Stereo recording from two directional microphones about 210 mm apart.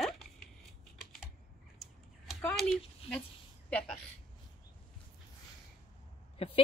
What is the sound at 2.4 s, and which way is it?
Speech, 5° left (ahead or behind).